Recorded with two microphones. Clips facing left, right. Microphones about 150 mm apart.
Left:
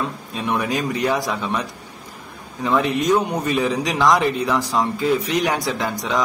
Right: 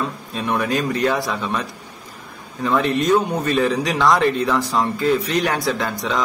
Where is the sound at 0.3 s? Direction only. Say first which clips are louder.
Right 1 dB; 15° left (ahead or behind).